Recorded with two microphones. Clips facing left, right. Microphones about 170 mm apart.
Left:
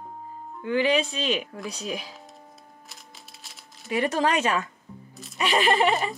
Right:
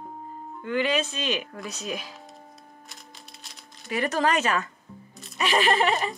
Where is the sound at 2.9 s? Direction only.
Centre (ahead or behind).